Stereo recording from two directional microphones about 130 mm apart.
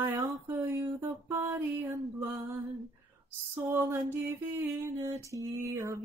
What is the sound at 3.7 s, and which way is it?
Music, 20° right (ahead or behind).